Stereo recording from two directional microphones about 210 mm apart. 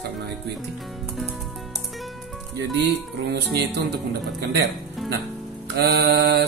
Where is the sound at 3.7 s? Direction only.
50° right (ahead or behind).